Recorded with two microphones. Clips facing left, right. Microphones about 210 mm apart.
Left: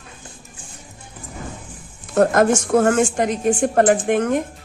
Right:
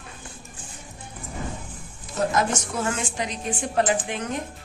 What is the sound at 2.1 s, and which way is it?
A woman's voice, 55° left (ahead or behind).